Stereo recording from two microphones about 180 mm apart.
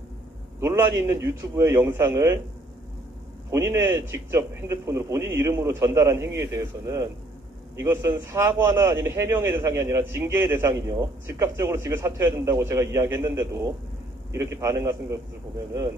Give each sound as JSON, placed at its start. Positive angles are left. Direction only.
{"t": 0.6, "sound": "a man's voice", "side_deg": -15}
{"t": 3.4, "sound": "a man's voice", "side_deg": -15}